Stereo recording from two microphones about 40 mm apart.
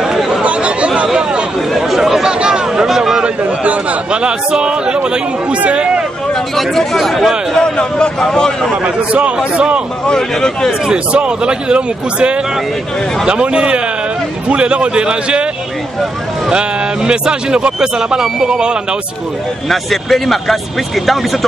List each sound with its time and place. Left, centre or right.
0.4 s chatter: right
1.0 s chatter: centre
2.4 s a sound: right
2.9 s a sound: centre
3.6 s speech: right
6.5 s speech: centre
7.5 s a man's voice: left
8.8 s a man's voice: right
10.0 s a man's voice: centre
10.9 s speech: right
16.4 s speech: right
19.7 s speech: centre